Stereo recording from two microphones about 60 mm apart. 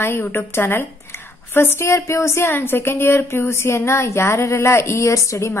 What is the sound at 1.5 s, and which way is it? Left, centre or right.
Speech, left.